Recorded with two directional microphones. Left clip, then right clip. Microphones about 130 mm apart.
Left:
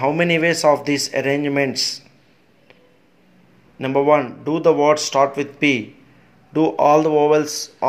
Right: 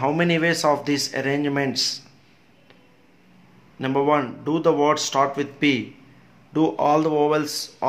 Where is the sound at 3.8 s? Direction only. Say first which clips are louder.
Left 5 dB; 15° left (ahead or behind).